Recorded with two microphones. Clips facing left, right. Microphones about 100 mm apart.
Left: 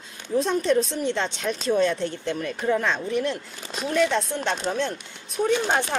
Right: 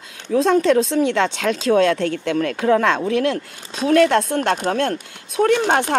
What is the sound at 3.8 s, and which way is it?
Speech, 70° right (ahead or behind).